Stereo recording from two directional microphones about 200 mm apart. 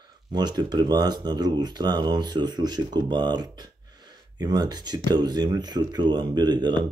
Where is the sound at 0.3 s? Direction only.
20° right (ahead or behind).